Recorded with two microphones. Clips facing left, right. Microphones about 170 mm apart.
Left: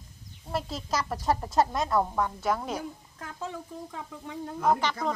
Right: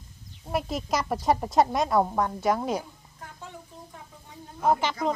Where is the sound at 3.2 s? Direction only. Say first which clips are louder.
Left 5 dB; 90° left.